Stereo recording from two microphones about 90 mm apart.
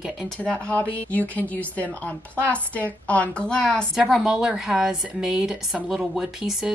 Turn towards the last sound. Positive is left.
turn(degrees=-5)  # may be behind; listen again after turning